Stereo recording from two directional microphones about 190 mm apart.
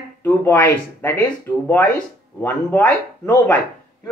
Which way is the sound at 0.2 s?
10° left (ahead or behind).